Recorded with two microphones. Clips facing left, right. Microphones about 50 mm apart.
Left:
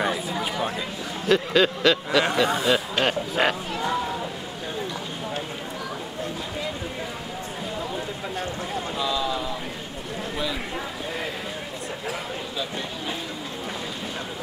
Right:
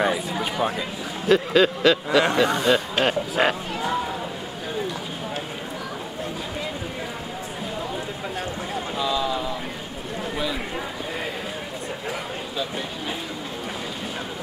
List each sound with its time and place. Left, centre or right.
0.0 s a man's voice: centre
8.7 s boat: centre